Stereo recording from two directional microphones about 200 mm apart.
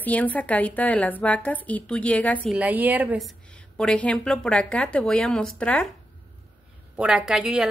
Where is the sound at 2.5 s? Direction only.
5° right (ahead or behind).